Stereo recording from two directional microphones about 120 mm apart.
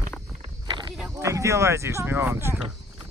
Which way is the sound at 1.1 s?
25° right (ahead or behind).